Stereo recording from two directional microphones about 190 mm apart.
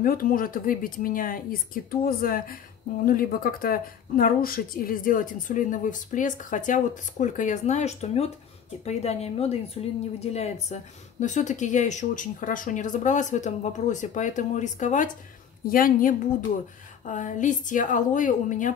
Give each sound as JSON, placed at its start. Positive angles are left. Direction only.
{"t": 0.0, "sound": "speech", "side_deg": 50}